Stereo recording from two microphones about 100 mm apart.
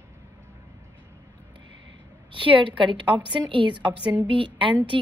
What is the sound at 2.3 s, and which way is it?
A woman's voice, 55° right (ahead or behind).